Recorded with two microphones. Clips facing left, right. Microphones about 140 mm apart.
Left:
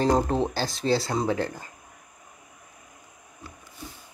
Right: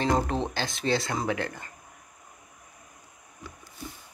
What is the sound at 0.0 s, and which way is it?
Speech, 35° left (ahead or behind).